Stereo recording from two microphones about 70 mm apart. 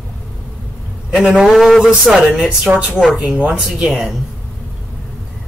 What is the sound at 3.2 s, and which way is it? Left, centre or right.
Speech, centre.